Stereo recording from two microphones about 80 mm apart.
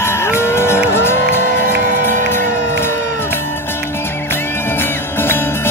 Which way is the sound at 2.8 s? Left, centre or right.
Left.